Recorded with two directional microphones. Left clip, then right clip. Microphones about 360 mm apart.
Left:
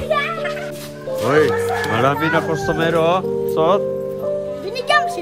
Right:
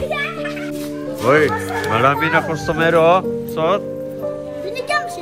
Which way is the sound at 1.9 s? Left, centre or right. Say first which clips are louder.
Right 4 dB; centre.